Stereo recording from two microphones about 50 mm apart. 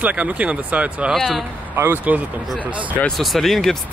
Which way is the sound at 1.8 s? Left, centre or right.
Right.